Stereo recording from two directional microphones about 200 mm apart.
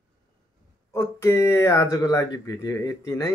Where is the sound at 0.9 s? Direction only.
15° left (ahead or behind).